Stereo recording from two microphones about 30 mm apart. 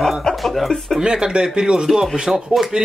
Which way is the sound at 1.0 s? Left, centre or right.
Right.